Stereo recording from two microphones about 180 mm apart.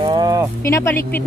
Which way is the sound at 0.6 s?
15° left (ahead or behind).